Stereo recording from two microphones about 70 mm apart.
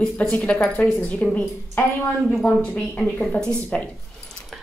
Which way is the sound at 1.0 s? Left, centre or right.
Left.